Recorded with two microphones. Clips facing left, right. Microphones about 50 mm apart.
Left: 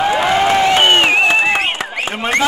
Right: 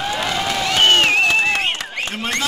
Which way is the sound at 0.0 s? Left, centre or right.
Left.